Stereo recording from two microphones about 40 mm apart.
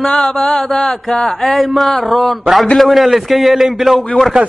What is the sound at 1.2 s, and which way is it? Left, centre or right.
Mantra, centre.